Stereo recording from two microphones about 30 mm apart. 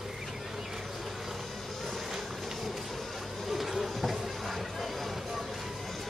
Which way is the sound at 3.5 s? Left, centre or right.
Centre.